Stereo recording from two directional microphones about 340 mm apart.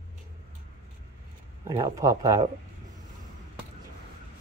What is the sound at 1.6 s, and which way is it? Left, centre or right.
Speech, centre.